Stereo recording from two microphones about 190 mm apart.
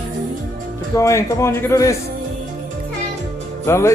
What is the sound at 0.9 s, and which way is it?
Speech, 15° left (ahead or behind).